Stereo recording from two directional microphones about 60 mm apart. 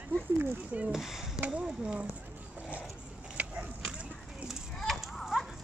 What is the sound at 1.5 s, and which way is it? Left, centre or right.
Speech, centre.